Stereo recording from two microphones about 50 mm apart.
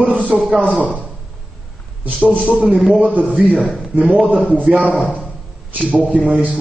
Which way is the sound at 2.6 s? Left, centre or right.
Centre.